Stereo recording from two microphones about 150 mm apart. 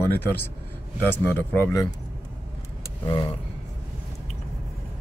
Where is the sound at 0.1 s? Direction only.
15° left (ahead or behind).